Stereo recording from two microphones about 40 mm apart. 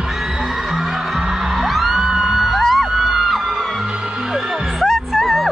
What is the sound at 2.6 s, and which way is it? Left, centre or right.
Music, centre.